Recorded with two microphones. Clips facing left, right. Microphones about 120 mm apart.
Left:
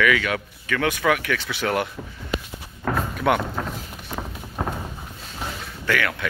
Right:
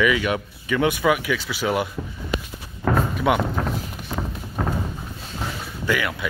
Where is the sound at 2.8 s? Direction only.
5° right (ahead or behind).